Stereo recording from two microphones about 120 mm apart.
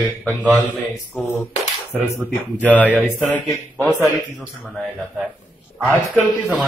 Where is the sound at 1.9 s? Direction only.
20° right (ahead or behind).